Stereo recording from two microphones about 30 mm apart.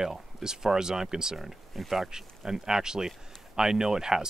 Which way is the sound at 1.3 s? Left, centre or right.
Centre.